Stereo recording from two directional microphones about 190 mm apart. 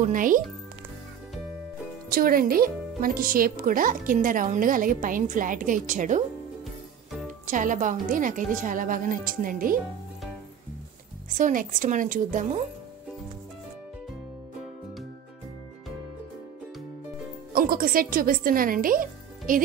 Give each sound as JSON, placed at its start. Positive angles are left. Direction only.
{"t": 0.0, "sound": "a woman's voice", "side_deg": -45}
{"t": 2.0, "sound": "a woman's voice", "side_deg": -50}
{"t": 7.4, "sound": "a woman's voice", "side_deg": -45}
{"t": 11.2, "sound": "a woman's voice", "side_deg": -45}
{"t": 17.5, "sound": "speech", "side_deg": -50}